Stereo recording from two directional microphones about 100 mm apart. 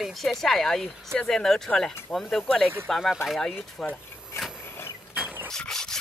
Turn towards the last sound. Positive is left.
turn(degrees=5)  # may be behind; listen again after turning